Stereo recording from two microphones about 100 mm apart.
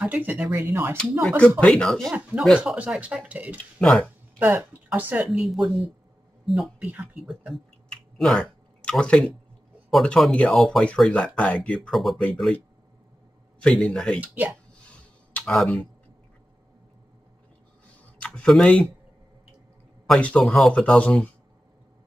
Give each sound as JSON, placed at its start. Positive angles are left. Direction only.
{"t": 0.0, "sound": "speech", "side_deg": -15}
{"t": 1.6, "sound": "speech", "side_deg": 5}
{"t": 2.5, "sound": "speech", "side_deg": -10}
{"t": 5.4, "sound": "speech", "side_deg": 0}
{"t": 6.8, "sound": "speech", "side_deg": -15}
{"t": 7.2, "sound": "a sound", "side_deg": 0}
{"t": 9.8, "sound": "speech", "side_deg": 5}
{"t": 13.6, "sound": "speech", "side_deg": 5}
{"t": 14.2, "sound": "speech", "side_deg": -15}
{"t": 15.3, "sound": "speech", "side_deg": 5}
{"t": 18.2, "sound": "speech", "side_deg": 10}
{"t": 20.1, "sound": "speech", "side_deg": 10}